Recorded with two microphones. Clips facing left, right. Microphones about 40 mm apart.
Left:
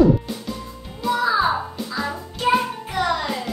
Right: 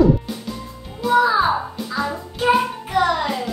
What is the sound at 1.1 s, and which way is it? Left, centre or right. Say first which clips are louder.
Speech: right 4 dB; centre.